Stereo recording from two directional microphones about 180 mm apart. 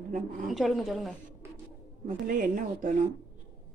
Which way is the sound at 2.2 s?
50° right (ahead or behind).